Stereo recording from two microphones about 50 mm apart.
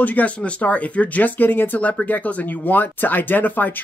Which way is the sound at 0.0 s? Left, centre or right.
Left.